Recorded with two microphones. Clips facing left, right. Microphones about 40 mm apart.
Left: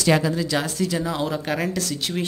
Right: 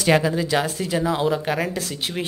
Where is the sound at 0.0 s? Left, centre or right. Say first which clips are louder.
Right 1 dB; centre.